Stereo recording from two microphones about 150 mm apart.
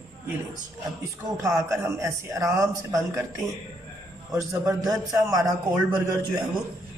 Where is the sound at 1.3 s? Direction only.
20° right (ahead or behind).